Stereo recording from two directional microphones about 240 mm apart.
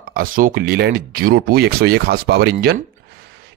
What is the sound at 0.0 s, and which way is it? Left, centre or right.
Speech, right.